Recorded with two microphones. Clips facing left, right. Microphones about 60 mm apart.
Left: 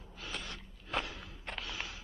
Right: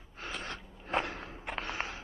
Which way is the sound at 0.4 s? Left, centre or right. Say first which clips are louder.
Right 5 dB; right.